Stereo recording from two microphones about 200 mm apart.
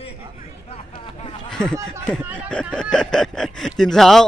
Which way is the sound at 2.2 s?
10° right (ahead or behind).